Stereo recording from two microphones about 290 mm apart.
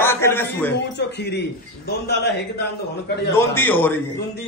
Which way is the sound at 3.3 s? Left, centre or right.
Centre.